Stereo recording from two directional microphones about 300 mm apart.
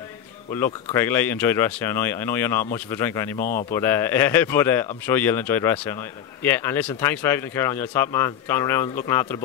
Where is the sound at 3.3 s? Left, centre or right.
Left.